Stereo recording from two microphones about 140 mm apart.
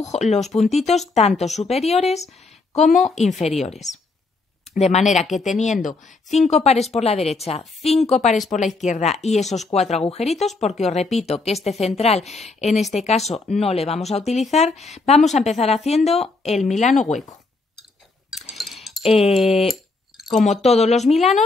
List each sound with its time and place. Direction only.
0.0 s a woman's voice: 55° left (ahead or behind)
18.3 s chink: centre (ahead or behind)
19.1 s a woman's voice: 45° left (ahead or behind)